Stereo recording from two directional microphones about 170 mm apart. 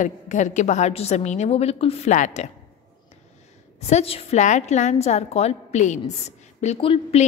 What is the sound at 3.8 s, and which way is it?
A woman's voice, 35° left (ahead or behind).